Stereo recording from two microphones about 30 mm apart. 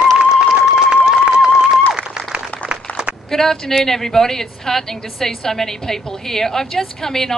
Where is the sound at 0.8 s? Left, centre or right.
Right.